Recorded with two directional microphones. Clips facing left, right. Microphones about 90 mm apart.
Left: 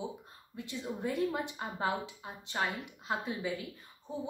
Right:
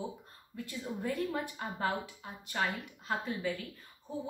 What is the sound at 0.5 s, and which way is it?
Speech, 20° left (ahead or behind).